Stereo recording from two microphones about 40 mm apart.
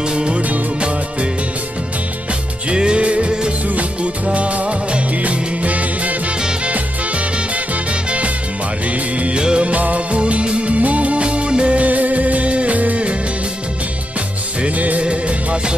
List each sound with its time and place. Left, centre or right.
0.1 s music: right
2.7 s music: right
9.2 s music: right
9.7 s music: right
14.8 s music: right
15.0 s music of bollywood: right